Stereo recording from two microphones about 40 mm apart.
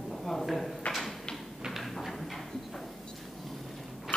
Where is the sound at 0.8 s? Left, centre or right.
Left.